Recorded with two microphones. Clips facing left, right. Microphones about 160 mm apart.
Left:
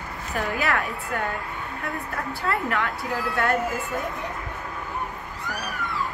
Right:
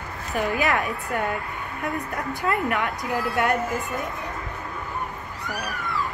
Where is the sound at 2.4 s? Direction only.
15° right (ahead or behind).